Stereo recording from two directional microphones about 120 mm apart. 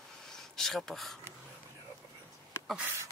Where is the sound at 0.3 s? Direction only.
Centre (ahead or behind).